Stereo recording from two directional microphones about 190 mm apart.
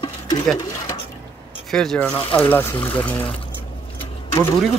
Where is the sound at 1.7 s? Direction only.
Centre (ahead or behind).